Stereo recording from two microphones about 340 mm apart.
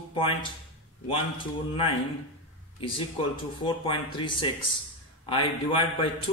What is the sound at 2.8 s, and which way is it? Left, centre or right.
Speech, centre.